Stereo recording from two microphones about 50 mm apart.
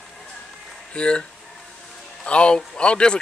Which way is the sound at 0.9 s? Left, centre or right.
Centre.